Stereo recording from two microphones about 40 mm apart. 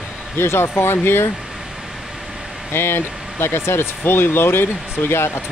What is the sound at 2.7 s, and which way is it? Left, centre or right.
Speech, left.